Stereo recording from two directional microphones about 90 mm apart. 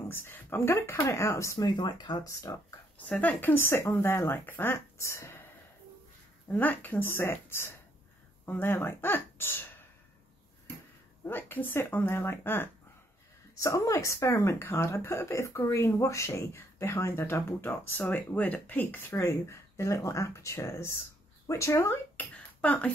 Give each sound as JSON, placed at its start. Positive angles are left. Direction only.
{"t": 0.1, "sound": "speech", "side_deg": 25}
{"t": 1.6, "sound": "speech", "side_deg": 55}
{"t": 2.2, "sound": "speech", "side_deg": 40}
{"t": 3.1, "sound": "speech", "side_deg": 20}
{"t": 6.5, "sound": "speech", "side_deg": 20}
{"t": 11.2, "sound": "speech", "side_deg": 25}
{"t": 13.6, "sound": "speech", "side_deg": 35}
{"t": 22.3, "sound": "speech", "side_deg": 15}